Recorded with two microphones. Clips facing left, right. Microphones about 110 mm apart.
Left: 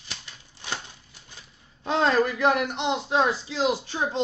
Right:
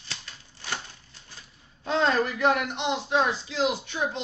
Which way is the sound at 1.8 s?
30° left (ahead or behind).